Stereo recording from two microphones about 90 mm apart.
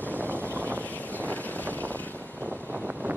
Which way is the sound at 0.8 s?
15° left (ahead or behind).